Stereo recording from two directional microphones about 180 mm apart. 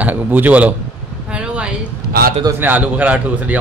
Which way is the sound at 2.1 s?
55° right (ahead or behind).